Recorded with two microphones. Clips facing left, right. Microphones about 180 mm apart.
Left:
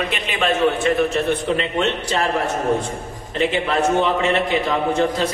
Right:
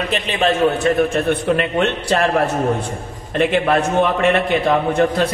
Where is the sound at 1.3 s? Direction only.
60° right (ahead or behind).